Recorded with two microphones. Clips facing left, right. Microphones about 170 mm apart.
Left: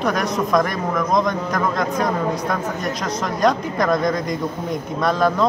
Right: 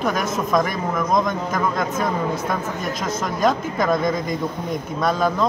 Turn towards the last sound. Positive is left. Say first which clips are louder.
# left 2 dB
turn(degrees=0)  # may be behind; listen again after turning